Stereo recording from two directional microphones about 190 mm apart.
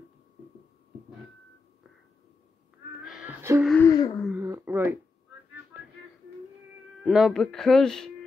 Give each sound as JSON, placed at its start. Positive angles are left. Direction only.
{"t": 3.0, "sound": "music", "side_deg": -5}
{"t": 3.6, "sound": "speech", "side_deg": 10}
{"t": 3.9, "sound": "wail", "side_deg": 20}
{"t": 4.3, "sound": "a sound", "side_deg": -10}
{"t": 7.1, "sound": "speech", "side_deg": 0}